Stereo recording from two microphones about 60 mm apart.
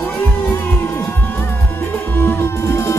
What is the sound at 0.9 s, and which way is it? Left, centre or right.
Music, left.